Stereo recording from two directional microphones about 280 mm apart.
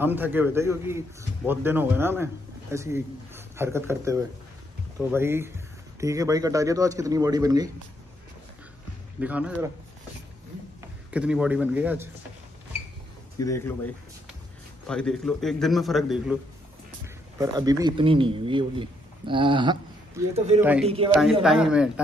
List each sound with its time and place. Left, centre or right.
0.0 s speech: centre
9.2 s a man's voice: centre
10.8 s a man's voice: centre
13.4 s a man's voice: centre
17.0 s speech: centre
21.1 s a man's voice: centre